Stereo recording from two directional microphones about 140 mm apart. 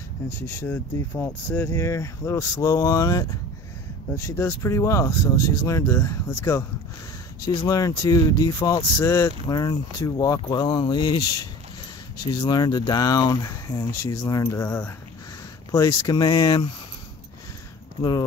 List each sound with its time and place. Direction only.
0.6 s speech: 15° left (ahead or behind); by 16.7 s 30° left (ahead or behind)